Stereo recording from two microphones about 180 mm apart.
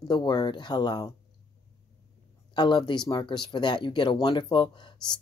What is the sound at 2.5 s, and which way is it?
Speech, 25° left (ahead or behind).